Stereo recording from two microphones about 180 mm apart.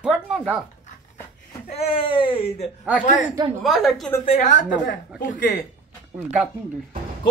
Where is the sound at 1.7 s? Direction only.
35° left (ahead or behind).